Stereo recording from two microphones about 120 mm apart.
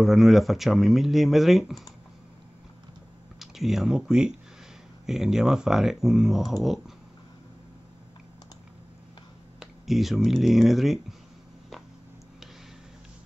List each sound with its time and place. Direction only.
0.0 s speech: centre (ahead or behind)
3.3 s speech: centre (ahead or behind)
9.6 s speech: centre (ahead or behind)